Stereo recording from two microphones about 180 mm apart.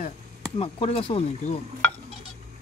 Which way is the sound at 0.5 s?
35° left (ahead or behind).